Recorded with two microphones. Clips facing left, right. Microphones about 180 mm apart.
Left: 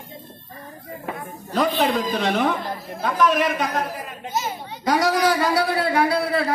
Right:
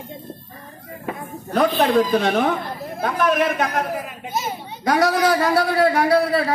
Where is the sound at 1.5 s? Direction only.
55° right (ahead or behind).